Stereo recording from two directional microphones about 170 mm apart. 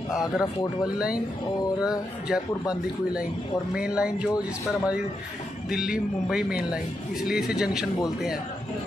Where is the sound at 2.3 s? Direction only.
5° right (ahead or behind).